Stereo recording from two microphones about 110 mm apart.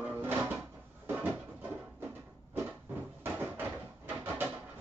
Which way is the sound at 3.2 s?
20° right (ahead or behind).